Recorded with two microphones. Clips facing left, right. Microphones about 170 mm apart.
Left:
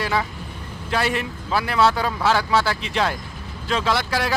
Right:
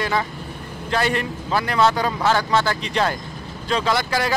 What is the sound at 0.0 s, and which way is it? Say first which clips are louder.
Speech: right 1 dB; 5° left (ahead or behind).